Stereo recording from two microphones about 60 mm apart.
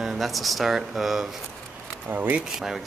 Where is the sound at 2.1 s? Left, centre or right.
Right.